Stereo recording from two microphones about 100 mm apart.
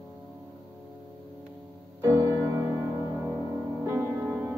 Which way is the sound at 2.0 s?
30° right (ahead or behind).